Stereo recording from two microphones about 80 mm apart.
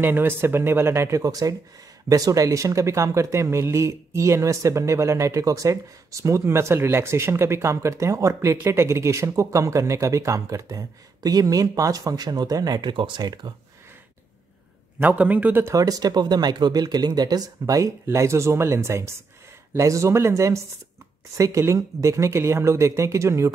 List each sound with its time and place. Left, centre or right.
0.0 s speech: right
12.8 s speech: right
15.0 s a man's voice: centre
15.6 s speech: right